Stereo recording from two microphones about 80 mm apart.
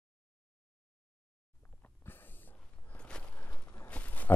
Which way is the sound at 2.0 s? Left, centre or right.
Left.